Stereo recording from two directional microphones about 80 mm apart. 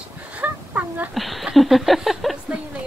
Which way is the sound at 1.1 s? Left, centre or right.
Centre.